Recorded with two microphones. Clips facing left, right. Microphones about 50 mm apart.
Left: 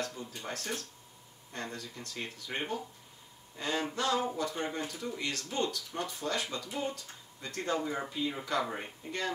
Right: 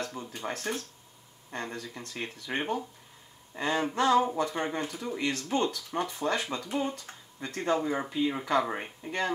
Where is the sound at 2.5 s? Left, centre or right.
Right.